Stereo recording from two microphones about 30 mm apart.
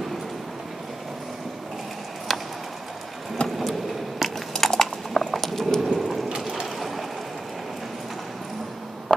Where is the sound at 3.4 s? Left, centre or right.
Left.